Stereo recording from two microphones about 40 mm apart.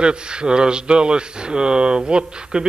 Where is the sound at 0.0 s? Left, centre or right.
Right.